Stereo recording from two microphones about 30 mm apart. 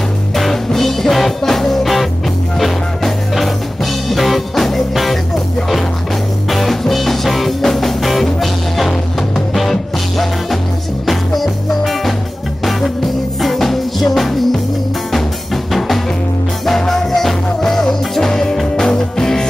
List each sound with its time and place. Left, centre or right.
0.4 s music: centre
6.5 s music: centre
13.4 s music: centre